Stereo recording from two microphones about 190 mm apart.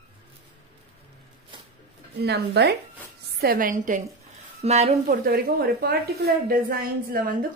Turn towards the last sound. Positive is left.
turn(degrees=-50)  # may be behind; listen again after turning